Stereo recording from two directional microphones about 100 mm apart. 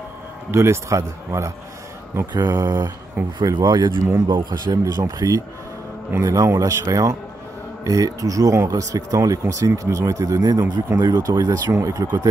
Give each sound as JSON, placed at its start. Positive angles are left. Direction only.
{"t": 0.5, "sound": "a man's voice", "side_deg": -30}
{"t": 2.3, "sound": "speech", "side_deg": -40}